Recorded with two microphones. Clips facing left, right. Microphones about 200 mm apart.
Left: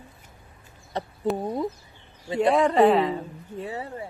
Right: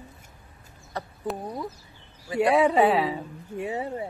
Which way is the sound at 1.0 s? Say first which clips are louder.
Left 4 dB; 20° left (ahead or behind).